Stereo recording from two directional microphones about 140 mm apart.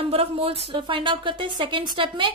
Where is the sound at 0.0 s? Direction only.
45° right (ahead or behind).